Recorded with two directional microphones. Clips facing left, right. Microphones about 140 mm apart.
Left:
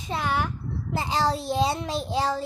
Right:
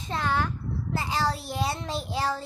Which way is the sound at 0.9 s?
20° left (ahead or behind).